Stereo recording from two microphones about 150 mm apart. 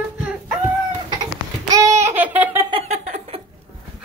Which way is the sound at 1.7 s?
20° right (ahead or behind).